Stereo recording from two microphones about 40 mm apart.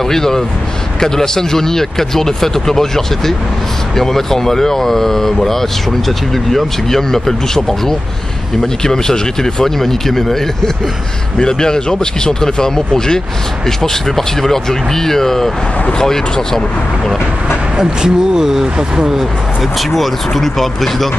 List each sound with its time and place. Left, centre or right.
0.0 s speech: centre
17.7 s speech: centre
19.6 s speech: centre